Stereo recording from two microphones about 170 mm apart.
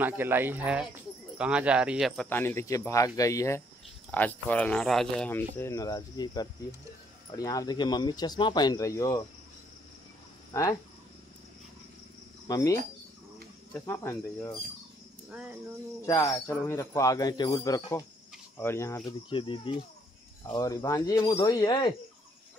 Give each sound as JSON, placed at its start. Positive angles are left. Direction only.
{"t": 0.0, "sound": "speech", "side_deg": -10}
{"t": 2.2, "sound": "speech", "side_deg": 15}
{"t": 5.6, "sound": "speech", "side_deg": 20}
{"t": 10.5, "sound": "speech", "side_deg": 20}
{"t": 12.4, "sound": "speech", "side_deg": 20}
{"t": 16.1, "sound": "speech", "side_deg": 20}
{"t": 19.2, "sound": "speech", "side_deg": 30}